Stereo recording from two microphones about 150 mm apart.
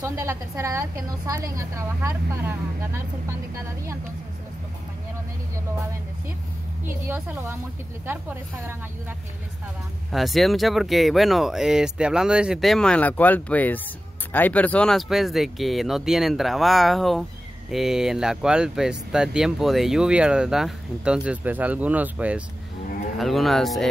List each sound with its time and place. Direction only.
0.0 s a woman's voice: 20° right (ahead or behind)
7.1 s speech: 15° right (ahead or behind)
10.1 s speech: centre (ahead or behind)